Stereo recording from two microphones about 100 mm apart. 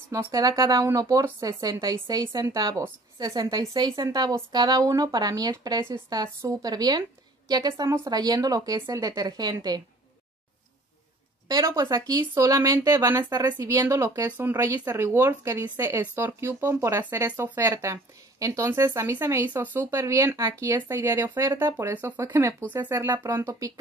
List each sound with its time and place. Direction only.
0.1 s a woman's voice: 35° right (ahead or behind)
11.4 s a woman's voice: 40° right (ahead or behind)
15.7 s speech: 20° right (ahead or behind)
19.4 s speech: 20° right (ahead or behind)
19.9 s a woman's voice: 30° right (ahead or behind)